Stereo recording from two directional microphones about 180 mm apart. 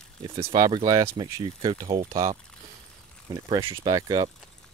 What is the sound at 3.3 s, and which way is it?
Speech, 15° right (ahead or behind).